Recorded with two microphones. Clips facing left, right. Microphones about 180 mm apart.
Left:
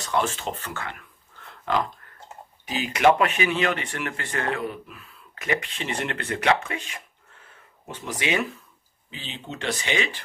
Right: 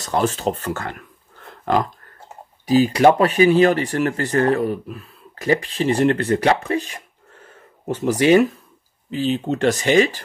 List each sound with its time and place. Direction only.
0.0 s speech: 40° right (ahead or behind)
1.5 s pig: 45° right (ahead or behind)
2.6 s speech: 35° right (ahead or behind)